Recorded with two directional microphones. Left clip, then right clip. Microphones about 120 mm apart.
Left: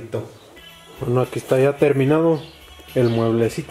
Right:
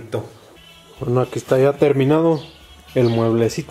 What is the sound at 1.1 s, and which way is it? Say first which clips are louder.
Speech: right 1 dB; 10° right (ahead or behind).